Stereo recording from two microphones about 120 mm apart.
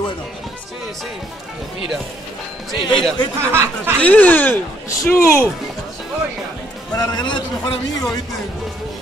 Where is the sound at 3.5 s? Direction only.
20° right (ahead or behind).